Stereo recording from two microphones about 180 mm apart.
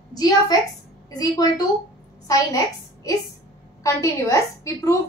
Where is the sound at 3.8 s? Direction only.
15° left (ahead or behind).